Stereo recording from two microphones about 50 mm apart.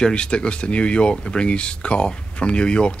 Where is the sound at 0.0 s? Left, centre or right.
Centre.